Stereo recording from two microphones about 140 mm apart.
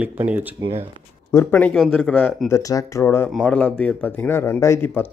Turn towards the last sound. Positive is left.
turn(degrees=15)  # may be behind; listen again after turning